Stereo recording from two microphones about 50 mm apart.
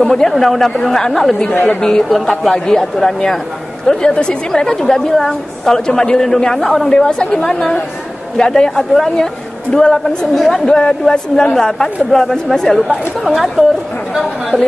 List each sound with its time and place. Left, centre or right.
0.1 s a woman's voice: centre
10.7 s a woman's voice: centre